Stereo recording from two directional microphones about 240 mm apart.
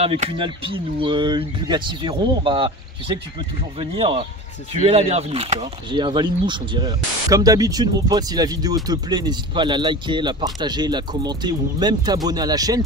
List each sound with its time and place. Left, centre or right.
0.0 s speech: right